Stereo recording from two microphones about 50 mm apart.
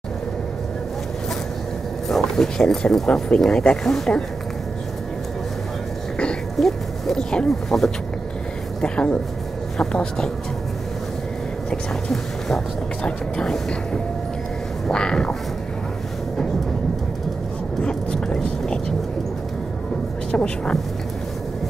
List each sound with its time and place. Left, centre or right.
2.0 s speech: centre
6.6 s speech: centre
11.7 s speech: centre
14.9 s speech: centre
17.8 s vehicle: centre
20.2 s speech: centre